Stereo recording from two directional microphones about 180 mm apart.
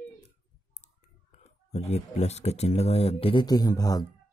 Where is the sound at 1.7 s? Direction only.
35° left (ahead or behind); by 4.0 s 20° left (ahead or behind).